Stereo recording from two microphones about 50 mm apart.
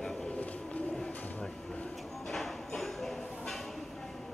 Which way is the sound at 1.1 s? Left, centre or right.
Left.